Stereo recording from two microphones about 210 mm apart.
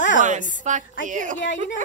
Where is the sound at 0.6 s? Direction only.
35° right (ahead or behind).